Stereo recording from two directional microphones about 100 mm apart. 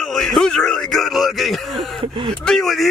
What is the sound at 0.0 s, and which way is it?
Speech, 5° left (ahead or behind).